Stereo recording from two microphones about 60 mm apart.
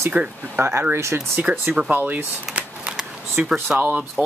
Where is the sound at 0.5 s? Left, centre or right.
Right.